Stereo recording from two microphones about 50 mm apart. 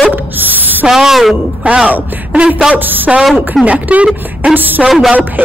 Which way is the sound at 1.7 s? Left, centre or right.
Right.